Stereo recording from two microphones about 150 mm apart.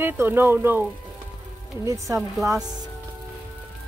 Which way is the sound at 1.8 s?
20° right (ahead or behind).